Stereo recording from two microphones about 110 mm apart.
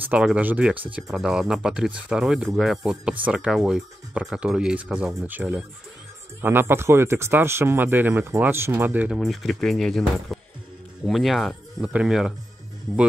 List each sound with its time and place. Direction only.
0.1 s speech: 10° right (ahead or behind)
6.4 s speech: 20° right (ahead or behind)
9.1 s speech: centre (ahead or behind)